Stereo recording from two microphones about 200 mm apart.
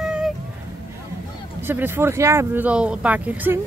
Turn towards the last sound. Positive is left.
turn(degrees=-10)  # may be behind; listen again after turning